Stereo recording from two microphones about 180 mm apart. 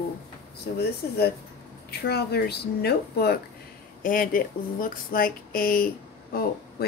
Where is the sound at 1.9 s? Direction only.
65° left (ahead or behind).